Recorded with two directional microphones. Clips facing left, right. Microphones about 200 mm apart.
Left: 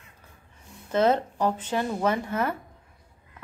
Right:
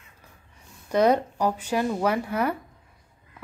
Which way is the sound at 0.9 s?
15° right (ahead or behind).